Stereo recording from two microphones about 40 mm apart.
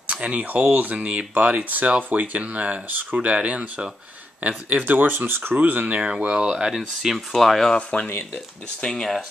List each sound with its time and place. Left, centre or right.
0.1 s speech: right
3.2 s speech: right
5.6 s speech: right
5.9 s speech: right
7.0 s speech: centre
7.3 s speech: centre
7.9 s speech: left
8.8 s speech: centre